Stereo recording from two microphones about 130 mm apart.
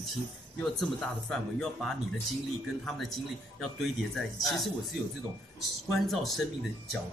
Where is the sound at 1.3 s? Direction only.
5° left (ahead or behind).